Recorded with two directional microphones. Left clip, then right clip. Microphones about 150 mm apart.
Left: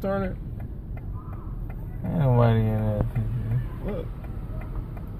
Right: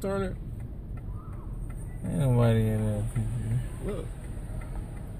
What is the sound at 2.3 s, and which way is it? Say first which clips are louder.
Speech: left 3 dB; 20° right (ahead or behind).